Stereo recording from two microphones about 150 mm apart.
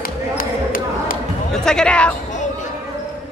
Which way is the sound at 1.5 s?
5° left (ahead or behind).